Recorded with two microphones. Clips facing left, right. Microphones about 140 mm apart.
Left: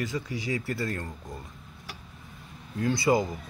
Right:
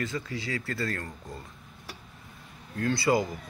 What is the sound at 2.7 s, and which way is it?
Speech, 20° left (ahead or behind).